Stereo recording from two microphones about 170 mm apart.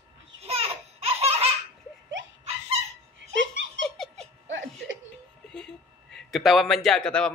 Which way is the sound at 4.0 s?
Centre (ahead or behind).